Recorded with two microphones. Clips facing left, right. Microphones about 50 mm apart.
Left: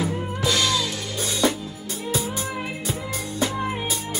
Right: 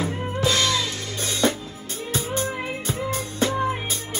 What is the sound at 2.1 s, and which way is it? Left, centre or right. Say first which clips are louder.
Music: right 2 dB; right.